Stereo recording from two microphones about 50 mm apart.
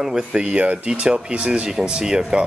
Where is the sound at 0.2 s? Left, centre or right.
Right.